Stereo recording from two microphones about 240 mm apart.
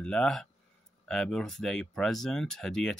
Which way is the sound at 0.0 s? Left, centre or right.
Centre.